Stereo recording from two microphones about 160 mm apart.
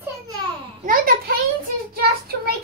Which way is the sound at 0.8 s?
60° right (ahead or behind).